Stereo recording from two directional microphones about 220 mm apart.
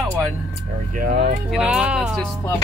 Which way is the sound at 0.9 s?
35° right (ahead or behind).